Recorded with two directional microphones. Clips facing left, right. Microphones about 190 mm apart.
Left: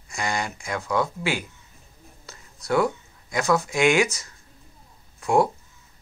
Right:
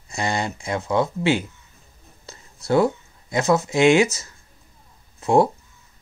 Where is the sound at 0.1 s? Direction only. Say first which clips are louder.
Right 3 dB; 25° right (ahead or behind).